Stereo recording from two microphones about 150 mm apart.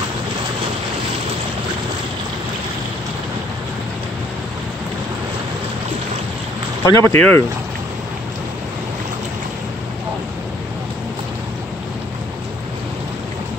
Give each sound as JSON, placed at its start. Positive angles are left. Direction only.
{"t": 6.8, "sound": "speech", "side_deg": 20}